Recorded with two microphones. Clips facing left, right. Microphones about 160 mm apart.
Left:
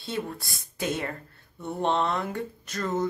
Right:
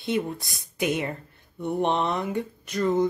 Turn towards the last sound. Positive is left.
turn(degrees=-15)  # may be behind; listen again after turning